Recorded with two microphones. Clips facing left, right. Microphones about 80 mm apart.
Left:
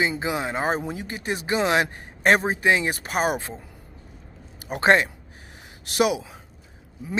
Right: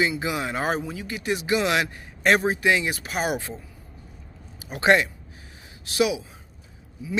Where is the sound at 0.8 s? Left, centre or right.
Left.